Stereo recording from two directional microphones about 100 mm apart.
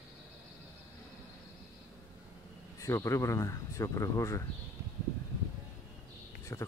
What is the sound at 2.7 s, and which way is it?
Speech, 30° left (ahead or behind).